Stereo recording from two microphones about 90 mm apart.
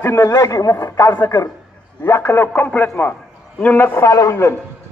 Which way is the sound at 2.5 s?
15° left (ahead or behind).